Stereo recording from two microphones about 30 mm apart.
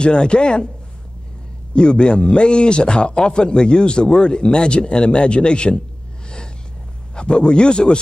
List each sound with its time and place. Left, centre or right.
0.0 s a man's voice: left
1.7 s a man's voice: left
7.2 s a man's voice: left